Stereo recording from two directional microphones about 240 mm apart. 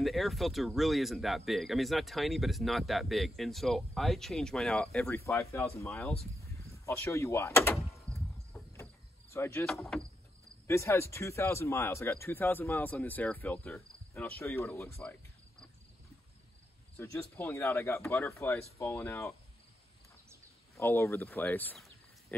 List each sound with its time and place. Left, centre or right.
0.0 s speech: centre
9.3 s speech: centre
16.9 s speech: centre
20.7 s speech: centre